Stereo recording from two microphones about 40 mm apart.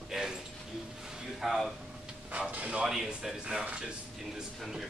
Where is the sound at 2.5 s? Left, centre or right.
Right.